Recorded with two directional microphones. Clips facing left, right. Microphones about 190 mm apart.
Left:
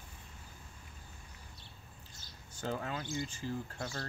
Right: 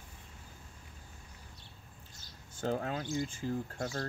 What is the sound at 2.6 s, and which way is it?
Speech, 45° right (ahead or behind).